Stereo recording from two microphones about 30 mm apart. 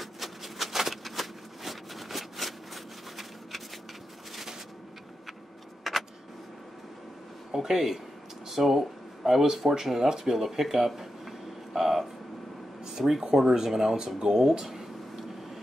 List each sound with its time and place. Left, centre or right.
0.0 s shuffling cards: centre
5.9 s vehicle: centre
7.5 s speech: centre
11.0 s train: centre
12.8 s a sound: centre
13.2 s speech: right
14.6 s a sound: centre